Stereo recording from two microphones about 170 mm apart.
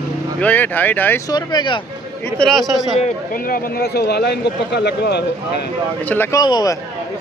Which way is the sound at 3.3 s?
60° left (ahead or behind).